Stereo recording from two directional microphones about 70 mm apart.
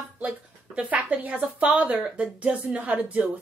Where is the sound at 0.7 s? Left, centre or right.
Centre.